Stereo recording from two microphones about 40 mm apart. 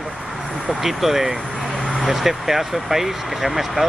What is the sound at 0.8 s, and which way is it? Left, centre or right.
Speech, centre.